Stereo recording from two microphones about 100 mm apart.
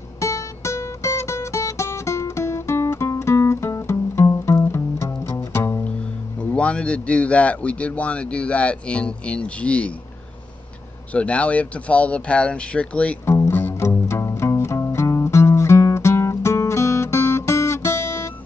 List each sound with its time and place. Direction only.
0.2 s music: 30° left (ahead or behind)
6.5 s a man's voice: 10° left (ahead or behind)
11.1 s a man's voice: 15° left (ahead or behind)
13.2 s music: 25° left (ahead or behind)